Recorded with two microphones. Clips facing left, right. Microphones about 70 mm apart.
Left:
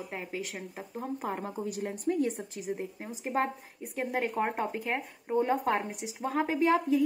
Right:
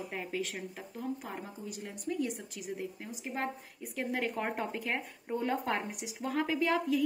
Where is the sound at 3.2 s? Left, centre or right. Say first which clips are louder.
Left 7 dB; left.